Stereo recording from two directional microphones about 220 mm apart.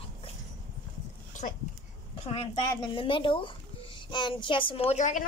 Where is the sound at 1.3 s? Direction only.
35° left (ahead or behind).